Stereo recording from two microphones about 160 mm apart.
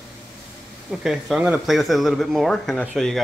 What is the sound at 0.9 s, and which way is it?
Speech, centre (ahead or behind).